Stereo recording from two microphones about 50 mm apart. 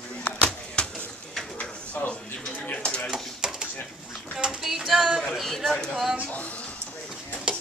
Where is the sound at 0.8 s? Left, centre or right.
Left.